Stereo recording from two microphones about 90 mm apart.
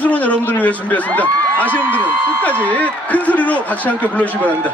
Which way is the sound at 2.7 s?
15° left (ahead or behind).